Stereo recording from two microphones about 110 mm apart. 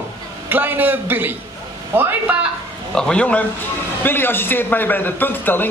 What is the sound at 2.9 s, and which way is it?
A man's voice, 5° left (ahead or behind).